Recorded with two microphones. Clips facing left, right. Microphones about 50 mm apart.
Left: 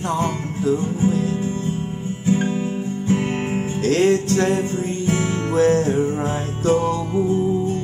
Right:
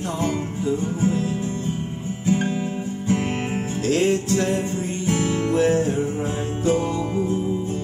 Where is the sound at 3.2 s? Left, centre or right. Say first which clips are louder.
Left 2 dB; centre.